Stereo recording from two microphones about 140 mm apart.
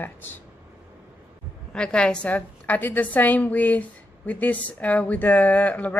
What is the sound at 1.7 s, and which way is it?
A woman's voice, 5° left (ahead or behind).